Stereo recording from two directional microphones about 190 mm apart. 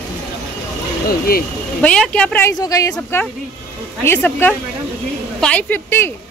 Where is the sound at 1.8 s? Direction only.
5° left (ahead or behind).